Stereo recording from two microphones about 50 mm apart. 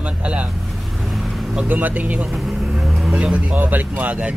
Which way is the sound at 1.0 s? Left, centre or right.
Centre.